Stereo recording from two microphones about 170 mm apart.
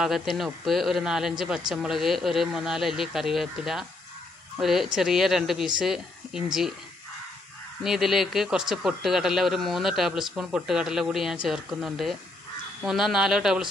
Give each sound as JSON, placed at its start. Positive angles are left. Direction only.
{"t": 0.0, "sound": "speech", "side_deg": 0}
{"t": 7.8, "sound": "speech", "side_deg": 0}